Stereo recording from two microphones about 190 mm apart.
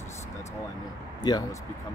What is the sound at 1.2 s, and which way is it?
Speech, 20° left (ahead or behind).